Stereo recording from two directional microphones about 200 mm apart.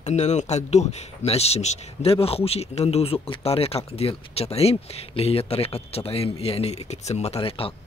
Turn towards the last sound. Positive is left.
turn(degrees=25)  # may be behind; listen again after turning